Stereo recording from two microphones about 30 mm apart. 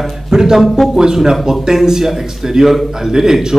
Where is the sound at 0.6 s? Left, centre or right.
Centre.